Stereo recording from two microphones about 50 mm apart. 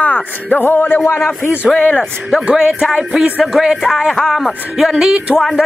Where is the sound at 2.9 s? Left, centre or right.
Centre.